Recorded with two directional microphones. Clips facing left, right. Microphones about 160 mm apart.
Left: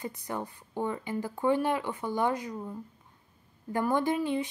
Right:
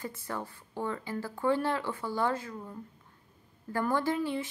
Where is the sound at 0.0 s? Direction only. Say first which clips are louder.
Left 2 dB; 20° left (ahead or behind).